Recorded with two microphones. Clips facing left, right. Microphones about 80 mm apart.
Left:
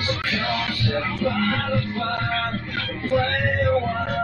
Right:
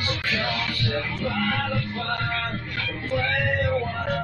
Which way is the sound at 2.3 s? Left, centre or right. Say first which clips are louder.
Left 3 dB; left.